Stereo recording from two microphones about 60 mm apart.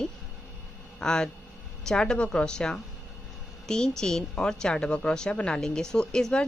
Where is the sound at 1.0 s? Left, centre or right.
Centre.